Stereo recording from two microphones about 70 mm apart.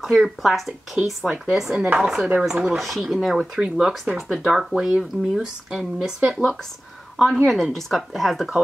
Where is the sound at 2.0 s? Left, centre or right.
Centre.